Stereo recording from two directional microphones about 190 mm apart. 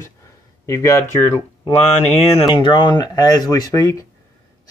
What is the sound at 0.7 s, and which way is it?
Speech, 15° left (ahead or behind).